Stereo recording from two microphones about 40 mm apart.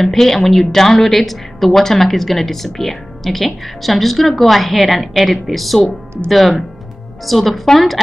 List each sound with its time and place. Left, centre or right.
0.0 s a woman's voice: centre